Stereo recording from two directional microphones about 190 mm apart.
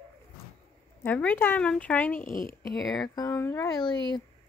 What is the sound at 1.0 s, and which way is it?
Speech, 10° left (ahead or behind).